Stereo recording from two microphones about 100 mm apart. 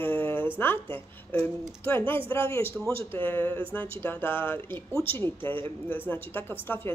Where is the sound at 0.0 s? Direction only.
20° left (ahead or behind).